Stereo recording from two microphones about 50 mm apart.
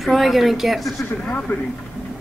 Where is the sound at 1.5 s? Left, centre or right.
Left.